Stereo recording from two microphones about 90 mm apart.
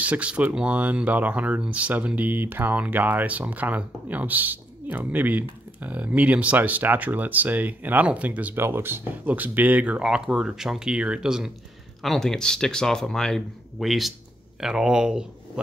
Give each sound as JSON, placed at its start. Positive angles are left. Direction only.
{"t": 0.0, "sound": "speech", "side_deg": -15}
{"t": 12.0, "sound": "speech", "side_deg": 5}